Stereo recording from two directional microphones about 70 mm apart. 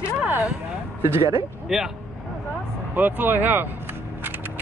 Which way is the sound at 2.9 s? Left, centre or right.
Right.